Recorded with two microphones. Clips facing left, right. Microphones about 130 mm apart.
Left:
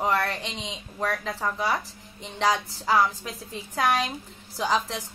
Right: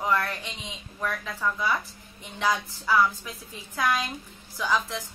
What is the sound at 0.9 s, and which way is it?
A woman's voice, 35° left (ahead or behind).